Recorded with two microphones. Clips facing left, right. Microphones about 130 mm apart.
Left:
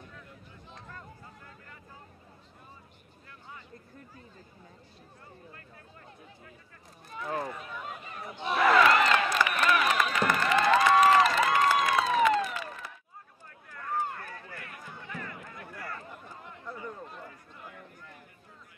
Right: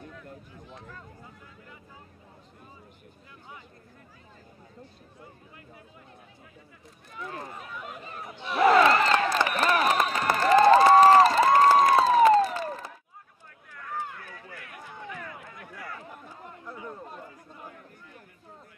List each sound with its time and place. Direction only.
7.1 s run: 35° left (ahead or behind)
8.5 s crowd: 30° right (ahead or behind)
13.7 s run: centre (ahead or behind)
16.6 s a sound: 5° right (ahead or behind)